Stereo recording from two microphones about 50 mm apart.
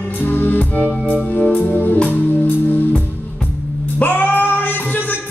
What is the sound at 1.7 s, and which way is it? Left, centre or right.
Music, left.